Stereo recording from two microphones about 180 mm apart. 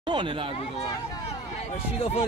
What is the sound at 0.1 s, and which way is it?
Speech, 25° right (ahead or behind).